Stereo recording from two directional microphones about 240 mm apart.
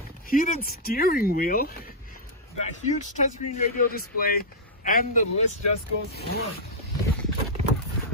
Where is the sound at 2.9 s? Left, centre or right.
Left.